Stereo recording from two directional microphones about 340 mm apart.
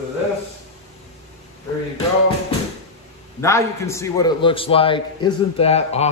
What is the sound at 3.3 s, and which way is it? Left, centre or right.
A man's voice, centre.